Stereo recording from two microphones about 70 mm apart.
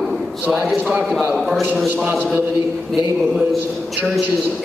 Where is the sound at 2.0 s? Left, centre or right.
Right.